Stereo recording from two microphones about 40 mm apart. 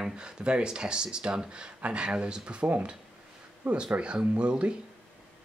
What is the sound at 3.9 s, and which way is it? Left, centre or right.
Speech, right.